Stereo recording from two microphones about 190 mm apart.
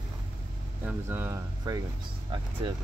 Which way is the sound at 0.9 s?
10° right (ahead or behind).